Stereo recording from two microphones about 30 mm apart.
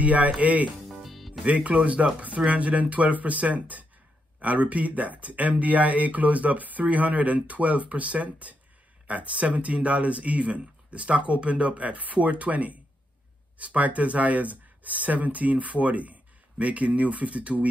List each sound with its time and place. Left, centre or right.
0.0 s speech: right
0.8 s music: centre
1.4 s speech: right